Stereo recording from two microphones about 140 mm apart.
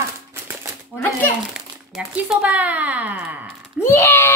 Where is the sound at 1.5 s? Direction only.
5° right (ahead or behind).